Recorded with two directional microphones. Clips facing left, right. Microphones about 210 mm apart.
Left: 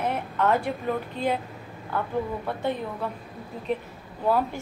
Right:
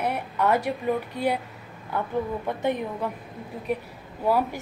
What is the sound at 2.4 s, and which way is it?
A woman's voice, 15° right (ahead or behind).